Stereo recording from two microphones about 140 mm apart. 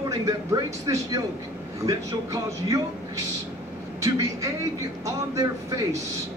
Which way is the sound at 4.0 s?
25° right (ahead or behind).